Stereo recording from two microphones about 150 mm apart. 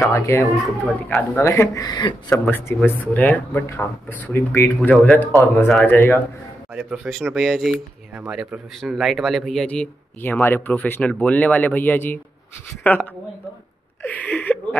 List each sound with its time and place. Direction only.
0.1 s speech: 20° left (ahead or behind)
2.2 s speech: 15° left (ahead or behind)
6.7 s a man's voice: 5° right (ahead or behind)